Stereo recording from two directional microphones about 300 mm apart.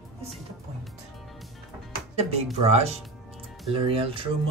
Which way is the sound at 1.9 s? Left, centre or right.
Right.